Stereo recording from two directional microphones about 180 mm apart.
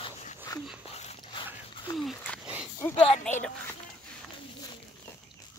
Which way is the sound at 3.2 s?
5° left (ahead or behind).